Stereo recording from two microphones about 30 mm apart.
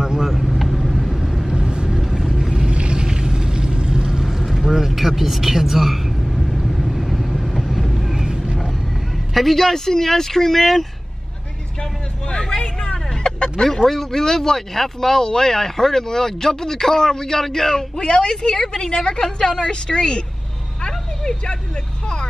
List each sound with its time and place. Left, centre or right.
0.3 s vehicle: centre
1.5 s vehicle: right
1.9 s vehicle: centre
2.6 s vehicle: right
4.6 s vehicle: centre
9.3 s a man's voice: centre
9.6 s speech: centre
11.8 s vehicle: left
13.7 s speech: centre
17.9 s a woman's voice: left